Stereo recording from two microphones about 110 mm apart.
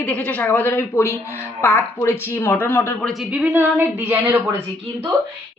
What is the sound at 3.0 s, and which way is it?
A woman's voice, centre (ahead or behind).